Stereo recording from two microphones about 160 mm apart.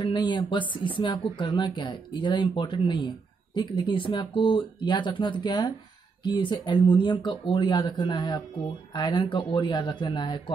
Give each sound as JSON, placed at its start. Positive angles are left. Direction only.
{"t": 0.0, "sound": "speech", "side_deg": 30}